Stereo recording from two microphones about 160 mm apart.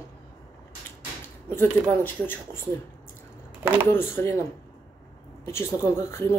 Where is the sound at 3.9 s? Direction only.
20° left (ahead or behind).